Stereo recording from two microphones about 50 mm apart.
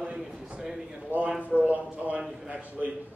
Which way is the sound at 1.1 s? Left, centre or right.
Right.